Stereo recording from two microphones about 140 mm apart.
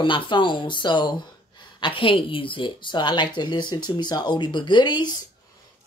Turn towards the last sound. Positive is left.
turn(degrees=35)  # may be behind; listen again after turning